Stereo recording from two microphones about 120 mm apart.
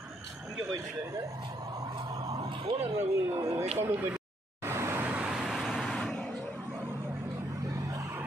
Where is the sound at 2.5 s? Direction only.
45° right (ahead or behind).